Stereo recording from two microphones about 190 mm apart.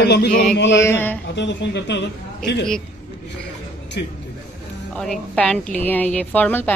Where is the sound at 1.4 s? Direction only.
70° left (ahead or behind).